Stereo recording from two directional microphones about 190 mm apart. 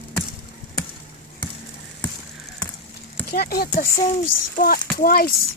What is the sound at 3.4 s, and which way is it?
Speech, 55° left (ahead or behind).